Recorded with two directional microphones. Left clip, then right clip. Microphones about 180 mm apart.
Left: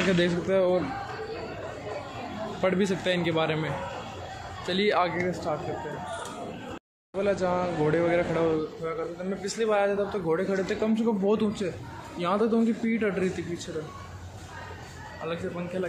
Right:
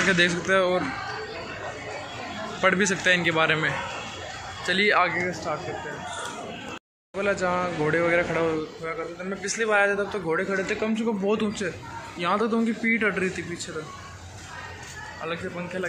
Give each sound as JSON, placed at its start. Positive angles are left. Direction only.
{"t": 0.1, "sound": "speech", "side_deg": 20}
{"t": 2.6, "sound": "speech", "side_deg": 10}
{"t": 7.2, "sound": "a man's voice", "side_deg": 10}